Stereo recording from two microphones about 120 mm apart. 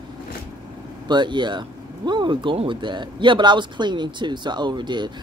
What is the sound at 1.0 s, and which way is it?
Speech, 40° right (ahead or behind).